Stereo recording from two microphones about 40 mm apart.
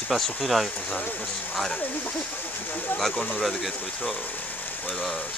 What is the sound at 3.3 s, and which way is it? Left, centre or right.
Speech, centre.